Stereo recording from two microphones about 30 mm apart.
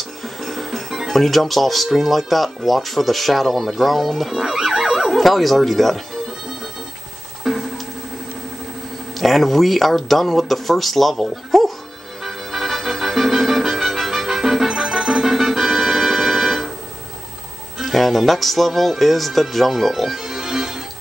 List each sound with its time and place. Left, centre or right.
0.2 s music: centre
1.0 s speech: centre
4.3 s a sound: centre
5.1 s speech: centre
7.5 s music: centre
9.2 s speech: centre
12.2 s music: centre
17.9 s speech: centre
20.2 s music: centre